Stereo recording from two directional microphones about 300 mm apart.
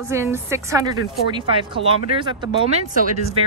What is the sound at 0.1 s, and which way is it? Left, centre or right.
A woman's voice, centre.